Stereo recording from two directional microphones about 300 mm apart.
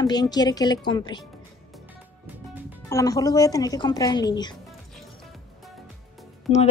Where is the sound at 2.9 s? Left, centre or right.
Centre.